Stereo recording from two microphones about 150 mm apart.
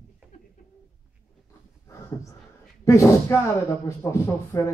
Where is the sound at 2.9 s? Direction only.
20° left (ahead or behind).